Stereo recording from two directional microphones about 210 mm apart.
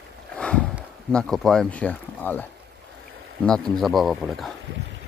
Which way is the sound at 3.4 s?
5° left (ahead or behind).